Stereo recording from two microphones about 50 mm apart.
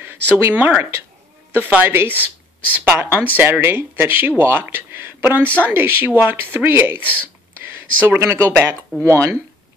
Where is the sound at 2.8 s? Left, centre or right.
Right.